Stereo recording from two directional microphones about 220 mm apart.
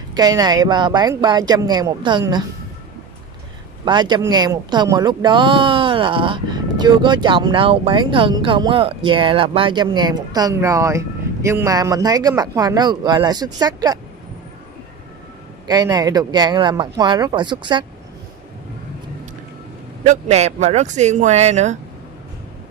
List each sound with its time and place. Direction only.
0.1 s speech: 15° right (ahead or behind)
3.8 s speech: 20° right (ahead or behind)
15.6 s speech: 20° right (ahead or behind)
20.0 s speech: 30° right (ahead or behind)